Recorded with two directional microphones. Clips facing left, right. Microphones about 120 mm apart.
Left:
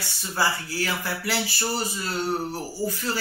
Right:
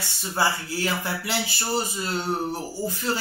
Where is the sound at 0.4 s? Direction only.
25° right (ahead or behind).